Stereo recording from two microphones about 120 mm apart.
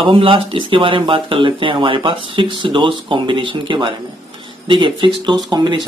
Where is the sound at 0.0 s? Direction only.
45° right (ahead or behind).